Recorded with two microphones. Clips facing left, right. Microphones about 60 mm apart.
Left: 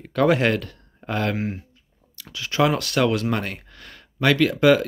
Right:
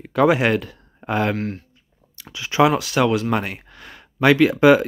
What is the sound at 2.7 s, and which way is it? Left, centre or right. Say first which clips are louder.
Speech: right 2 dB; centre.